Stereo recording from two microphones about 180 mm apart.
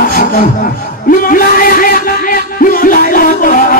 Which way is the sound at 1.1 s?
50° left (ahead or behind).